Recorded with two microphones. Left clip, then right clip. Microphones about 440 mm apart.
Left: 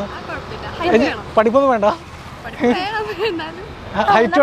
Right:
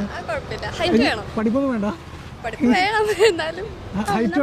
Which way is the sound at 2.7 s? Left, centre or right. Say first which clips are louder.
Right 2 dB; right.